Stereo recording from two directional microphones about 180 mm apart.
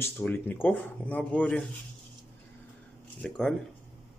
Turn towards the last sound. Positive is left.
turn(degrees=5)  # may be behind; listen again after turning